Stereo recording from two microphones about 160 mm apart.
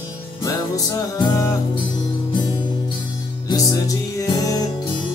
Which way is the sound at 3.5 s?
25° left (ahead or behind).